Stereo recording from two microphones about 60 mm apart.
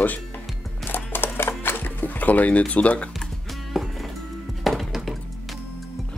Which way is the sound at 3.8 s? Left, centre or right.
Centre.